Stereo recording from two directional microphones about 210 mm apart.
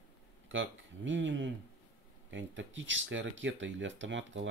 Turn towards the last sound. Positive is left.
turn(degrees=-65)  # may be behind; listen again after turning